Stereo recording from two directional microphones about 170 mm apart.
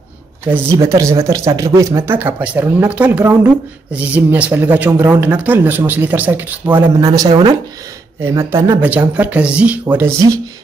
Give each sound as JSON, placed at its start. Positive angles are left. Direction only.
{"t": 0.5, "sound": "speech", "side_deg": -15}
{"t": 7.2, "sound": "speech", "side_deg": -25}
{"t": 8.2, "sound": "speech", "side_deg": -15}